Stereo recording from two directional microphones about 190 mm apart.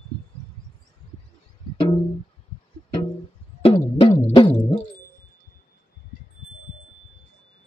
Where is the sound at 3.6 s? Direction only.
30° left (ahead or behind).